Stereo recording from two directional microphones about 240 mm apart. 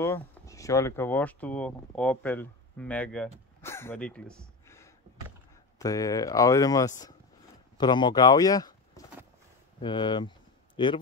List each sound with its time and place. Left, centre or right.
0.0 s speech: centre